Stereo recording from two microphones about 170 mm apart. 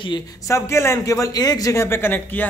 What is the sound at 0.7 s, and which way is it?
A man's voice, 15° left (ahead or behind).